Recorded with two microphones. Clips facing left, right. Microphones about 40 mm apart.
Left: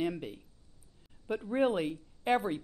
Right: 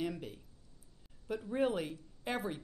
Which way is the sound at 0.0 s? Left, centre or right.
Left.